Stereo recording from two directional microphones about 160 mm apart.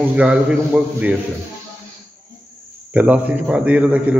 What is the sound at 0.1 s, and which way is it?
A man's voice, 5° right (ahead or behind).